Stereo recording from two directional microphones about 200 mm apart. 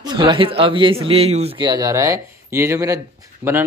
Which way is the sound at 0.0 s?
25° right (ahead or behind).